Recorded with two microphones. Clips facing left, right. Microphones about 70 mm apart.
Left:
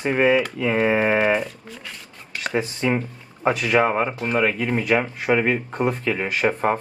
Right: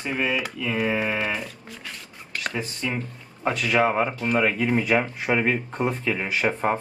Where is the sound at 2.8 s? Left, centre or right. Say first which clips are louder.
Left 8 dB; left.